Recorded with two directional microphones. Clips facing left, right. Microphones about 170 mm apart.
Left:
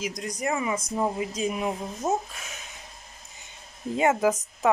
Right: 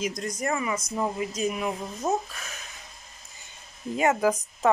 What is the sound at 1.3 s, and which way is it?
Speech, 30° left (ahead or behind).